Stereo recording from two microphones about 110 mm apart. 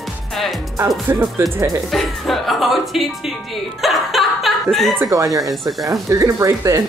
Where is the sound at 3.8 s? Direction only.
Centre (ahead or behind).